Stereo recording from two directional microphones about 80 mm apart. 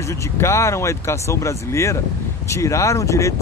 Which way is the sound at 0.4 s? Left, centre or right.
Left.